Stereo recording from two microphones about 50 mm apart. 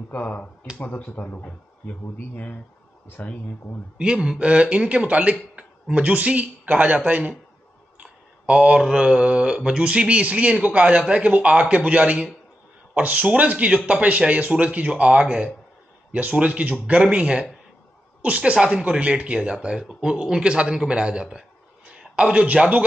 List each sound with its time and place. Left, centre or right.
0.1 s speech: left
4.0 s a man's voice: centre; by 7.3 s right
8.0 s a sound: right
8.8 s a man's voice: centre